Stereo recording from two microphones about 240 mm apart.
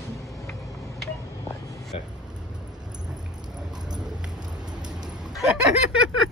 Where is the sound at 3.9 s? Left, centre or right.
Centre.